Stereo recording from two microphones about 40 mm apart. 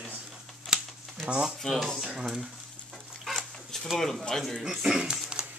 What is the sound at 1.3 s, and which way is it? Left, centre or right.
Speech, right.